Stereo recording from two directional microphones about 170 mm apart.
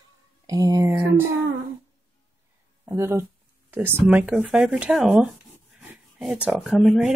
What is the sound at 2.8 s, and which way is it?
Speech, 15° right (ahead or behind).